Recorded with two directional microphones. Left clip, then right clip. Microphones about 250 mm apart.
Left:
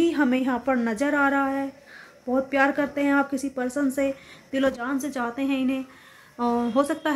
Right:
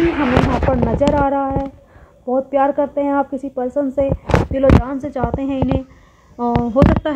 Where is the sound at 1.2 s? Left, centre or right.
Left.